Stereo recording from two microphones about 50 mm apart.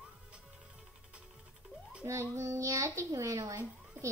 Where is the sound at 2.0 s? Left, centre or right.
Right.